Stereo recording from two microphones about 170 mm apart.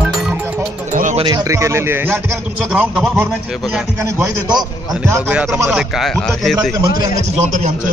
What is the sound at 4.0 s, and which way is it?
Speech, 20° right (ahead or behind).